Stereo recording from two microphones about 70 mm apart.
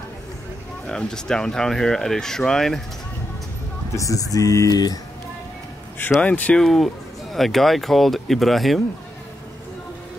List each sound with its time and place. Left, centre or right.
0.8 s speech: centre
3.9 s speech: left
5.9 s speech: left
6.5 s speech: centre